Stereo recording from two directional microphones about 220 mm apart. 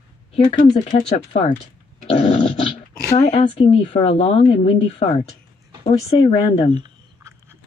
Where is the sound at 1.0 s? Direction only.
30° left (ahead or behind).